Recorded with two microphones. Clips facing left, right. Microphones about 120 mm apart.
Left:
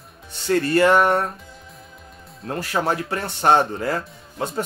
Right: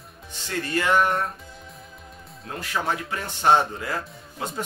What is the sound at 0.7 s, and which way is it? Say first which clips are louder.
Speech: left 5 dB; 45° left (ahead or behind).